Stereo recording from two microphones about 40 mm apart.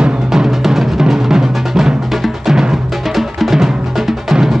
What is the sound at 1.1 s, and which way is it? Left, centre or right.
Music, centre.